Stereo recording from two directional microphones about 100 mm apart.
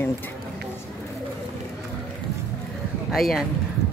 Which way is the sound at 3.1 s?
Centre (ahead or behind).